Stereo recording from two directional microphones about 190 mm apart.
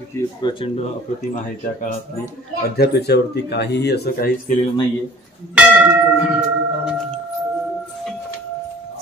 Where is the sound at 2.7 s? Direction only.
60° left (ahead or behind).